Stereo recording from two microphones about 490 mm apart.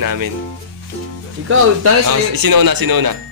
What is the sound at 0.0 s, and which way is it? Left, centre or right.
Speech, right.